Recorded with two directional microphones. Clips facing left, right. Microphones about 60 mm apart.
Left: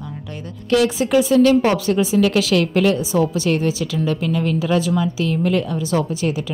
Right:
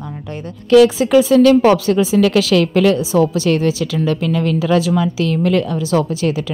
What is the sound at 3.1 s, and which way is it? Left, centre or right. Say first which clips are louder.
A woman's voice: right 4 dB; right.